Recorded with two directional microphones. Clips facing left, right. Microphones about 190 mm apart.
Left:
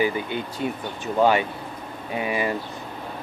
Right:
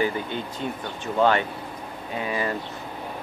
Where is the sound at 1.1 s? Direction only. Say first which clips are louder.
Left 1 dB; 10° left (ahead or behind).